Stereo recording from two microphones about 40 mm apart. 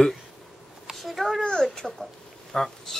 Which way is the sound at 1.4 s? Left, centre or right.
Centre.